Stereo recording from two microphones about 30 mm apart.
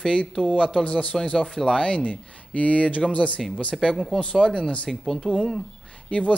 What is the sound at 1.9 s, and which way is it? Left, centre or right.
Speech, left.